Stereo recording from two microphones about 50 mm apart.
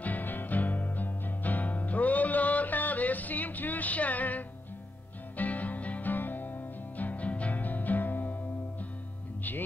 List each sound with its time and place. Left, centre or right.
0.0 s music: left